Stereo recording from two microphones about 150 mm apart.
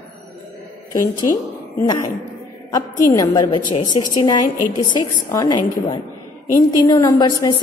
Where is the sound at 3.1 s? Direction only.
25° left (ahead or behind).